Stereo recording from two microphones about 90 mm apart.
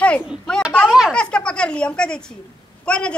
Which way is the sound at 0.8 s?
5° right (ahead or behind).